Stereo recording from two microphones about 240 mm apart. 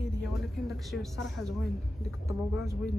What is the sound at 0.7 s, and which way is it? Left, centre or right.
Speech, centre.